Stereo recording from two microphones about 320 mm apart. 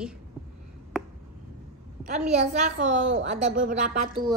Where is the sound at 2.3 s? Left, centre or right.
Right.